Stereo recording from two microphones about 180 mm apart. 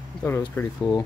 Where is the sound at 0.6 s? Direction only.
15° left (ahead or behind).